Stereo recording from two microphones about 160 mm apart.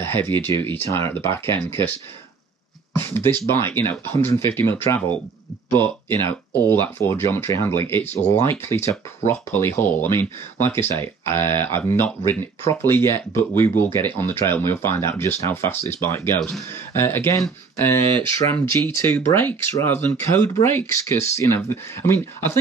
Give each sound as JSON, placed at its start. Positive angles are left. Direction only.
{"t": 0.0, "sound": "speech", "side_deg": 15}
{"t": 3.0, "sound": "speech", "side_deg": 15}